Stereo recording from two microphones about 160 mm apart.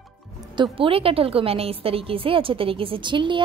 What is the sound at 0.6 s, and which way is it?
A woman's voice, 35° right (ahead or behind).